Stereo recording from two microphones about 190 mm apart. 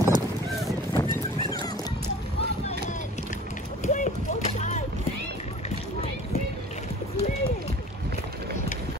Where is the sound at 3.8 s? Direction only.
40° left (ahead or behind).